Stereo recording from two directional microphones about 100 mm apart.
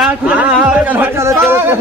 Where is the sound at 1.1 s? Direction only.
30° right (ahead or behind).